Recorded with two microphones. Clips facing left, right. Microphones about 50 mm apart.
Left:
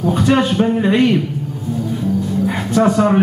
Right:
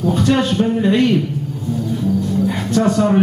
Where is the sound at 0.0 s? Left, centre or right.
Centre.